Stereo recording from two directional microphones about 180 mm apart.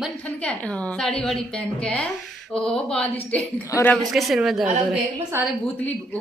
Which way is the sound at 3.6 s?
20° left (ahead or behind).